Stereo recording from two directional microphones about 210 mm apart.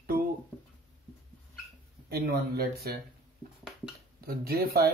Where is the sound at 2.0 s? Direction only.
45° right (ahead or behind).